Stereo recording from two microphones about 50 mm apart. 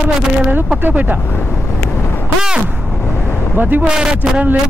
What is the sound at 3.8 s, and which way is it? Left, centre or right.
Speech, centre.